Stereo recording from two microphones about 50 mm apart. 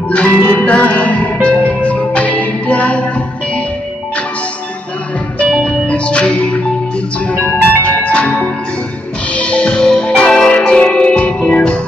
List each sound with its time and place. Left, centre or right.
0.1 s music: left
5.4 s music: left